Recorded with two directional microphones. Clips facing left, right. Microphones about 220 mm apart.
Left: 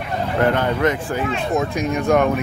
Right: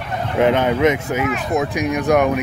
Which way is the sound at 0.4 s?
20° right (ahead or behind).